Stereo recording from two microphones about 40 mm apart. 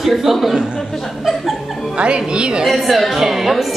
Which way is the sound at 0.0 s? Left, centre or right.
Centre.